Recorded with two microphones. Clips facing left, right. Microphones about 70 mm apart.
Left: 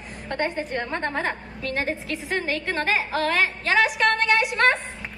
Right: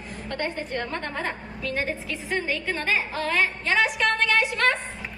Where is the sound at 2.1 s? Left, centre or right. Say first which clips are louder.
Even; left.